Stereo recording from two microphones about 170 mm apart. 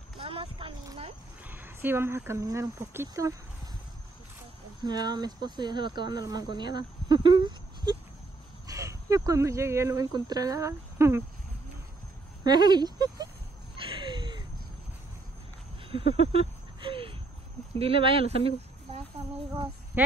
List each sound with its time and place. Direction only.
0.2 s speech: 35° right (ahead or behind)
1.4 s speech: 10° right (ahead or behind)
4.8 s speech: 25° right (ahead or behind)
12.4 s speech: 25° right (ahead or behind)
13.9 s a sound: 25° right (ahead or behind)
15.9 s a sound: 35° right (ahead or behind)
17.7 s speech: 35° right (ahead or behind)